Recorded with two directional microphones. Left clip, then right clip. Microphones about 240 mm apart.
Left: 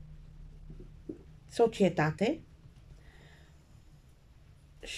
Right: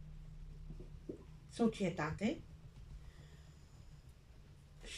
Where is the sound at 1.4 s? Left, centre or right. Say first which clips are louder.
Left 11 dB; left.